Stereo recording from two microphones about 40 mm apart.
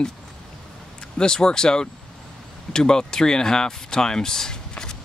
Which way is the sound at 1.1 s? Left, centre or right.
Centre.